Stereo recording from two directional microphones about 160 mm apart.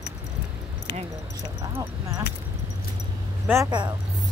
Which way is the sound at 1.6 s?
20° right (ahead or behind).